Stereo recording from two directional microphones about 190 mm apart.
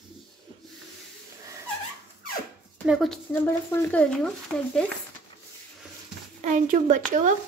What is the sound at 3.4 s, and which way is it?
Speech, 10° left (ahead or behind).